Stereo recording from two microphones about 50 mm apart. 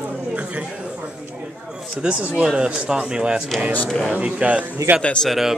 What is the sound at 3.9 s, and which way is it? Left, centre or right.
Speech, centre.